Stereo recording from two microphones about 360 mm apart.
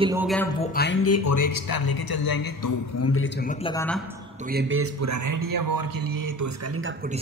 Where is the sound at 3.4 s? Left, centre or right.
Centre.